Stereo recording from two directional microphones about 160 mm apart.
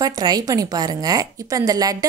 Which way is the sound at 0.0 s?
25° right (ahead or behind).